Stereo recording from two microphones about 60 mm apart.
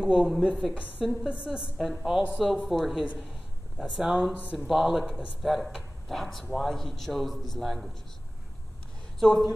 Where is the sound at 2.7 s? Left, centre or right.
Centre.